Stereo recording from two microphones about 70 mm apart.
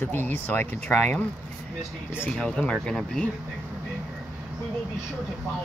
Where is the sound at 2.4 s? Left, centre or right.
Centre.